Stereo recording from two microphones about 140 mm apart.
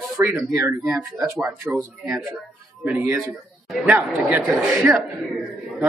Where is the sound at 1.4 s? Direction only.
5° right (ahead or behind).